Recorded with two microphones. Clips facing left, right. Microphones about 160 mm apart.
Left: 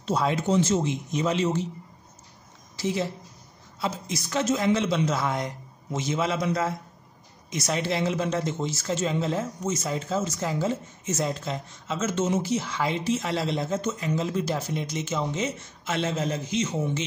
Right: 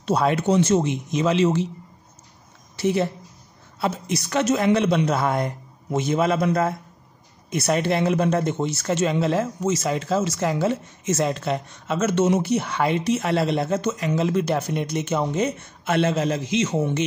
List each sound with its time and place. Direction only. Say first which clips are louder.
0.0 s speech: right 5 dB; 65° right (ahead or behind); by 1.7 s 90° right
2.7 s a woman's voice: right 6 dB; 65° right (ahead or behind); by 17.0 s 80° right